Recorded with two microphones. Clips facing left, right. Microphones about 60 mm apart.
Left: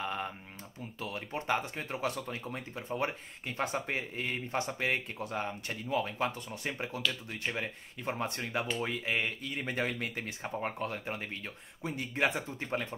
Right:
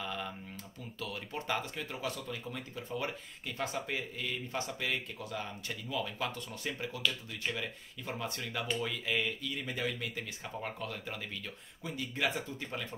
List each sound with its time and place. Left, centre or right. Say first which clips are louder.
0.0 s typing: left 3 dB; left
0.9 s speech: left 2 dB; left